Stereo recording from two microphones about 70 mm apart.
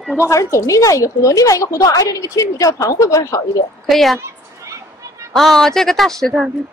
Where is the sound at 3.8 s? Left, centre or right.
Centre.